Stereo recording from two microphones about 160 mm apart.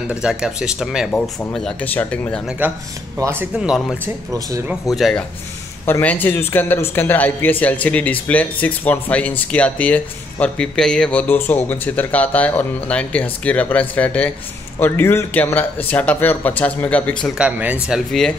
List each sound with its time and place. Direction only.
0.1 s speech: 5° right (ahead or behind)
1.1 s speech: 5° left (ahead or behind)
3.2 s speech: 15° right (ahead or behind)
3.5 s speech: 5° right (ahead or behind)
5.9 s speech: 10° left (ahead or behind)
17.4 s speech: 10° right (ahead or behind)